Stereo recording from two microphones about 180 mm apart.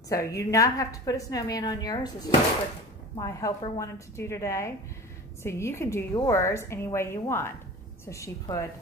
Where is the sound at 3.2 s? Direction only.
15° left (ahead or behind).